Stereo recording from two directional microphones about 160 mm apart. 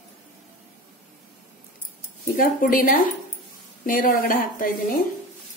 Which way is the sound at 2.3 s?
60° left (ahead or behind).